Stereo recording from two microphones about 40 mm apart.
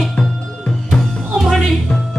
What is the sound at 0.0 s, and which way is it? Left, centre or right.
Music, centre.